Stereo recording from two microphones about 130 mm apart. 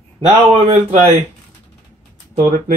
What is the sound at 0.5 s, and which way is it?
Speech, 50° right (ahead or behind).